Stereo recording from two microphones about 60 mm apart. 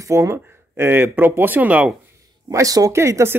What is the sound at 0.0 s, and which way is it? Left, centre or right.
Speech, right.